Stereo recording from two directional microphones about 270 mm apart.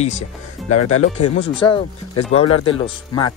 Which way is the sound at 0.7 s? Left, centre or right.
Left.